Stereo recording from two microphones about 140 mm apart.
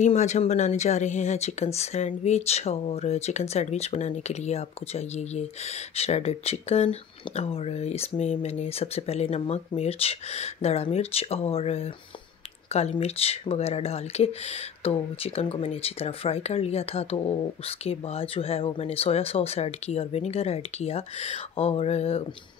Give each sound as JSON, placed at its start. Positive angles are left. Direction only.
{"t": 0.0, "sound": "speech", "side_deg": 55}
{"t": 13.0, "sound": "speech", "side_deg": 45}